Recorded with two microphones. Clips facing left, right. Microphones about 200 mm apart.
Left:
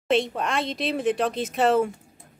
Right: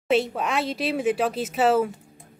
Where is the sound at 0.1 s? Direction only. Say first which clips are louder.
Right 1 dB; 5° right (ahead or behind).